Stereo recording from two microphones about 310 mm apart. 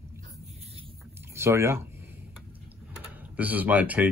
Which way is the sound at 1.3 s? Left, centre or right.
Centre.